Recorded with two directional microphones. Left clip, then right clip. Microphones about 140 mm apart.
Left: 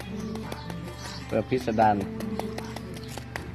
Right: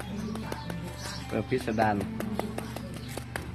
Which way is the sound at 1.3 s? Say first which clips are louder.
Left 4 dB; 15° left (ahead or behind).